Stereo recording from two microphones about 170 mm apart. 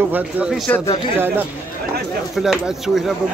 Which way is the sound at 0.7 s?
15° left (ahead or behind).